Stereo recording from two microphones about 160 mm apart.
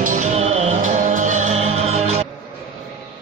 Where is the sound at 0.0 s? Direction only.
50° right (ahead or behind).